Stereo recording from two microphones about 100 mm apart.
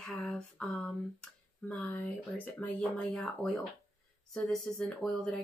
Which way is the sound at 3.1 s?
5° left (ahead or behind).